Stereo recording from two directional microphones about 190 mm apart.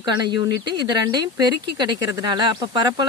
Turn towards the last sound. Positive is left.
turn(degrees=-25)  # may be behind; listen again after turning